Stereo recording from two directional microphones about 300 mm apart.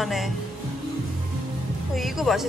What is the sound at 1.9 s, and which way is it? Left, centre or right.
Speech, centre.